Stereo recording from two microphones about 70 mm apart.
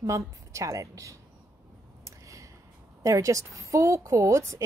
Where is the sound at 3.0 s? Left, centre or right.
Right.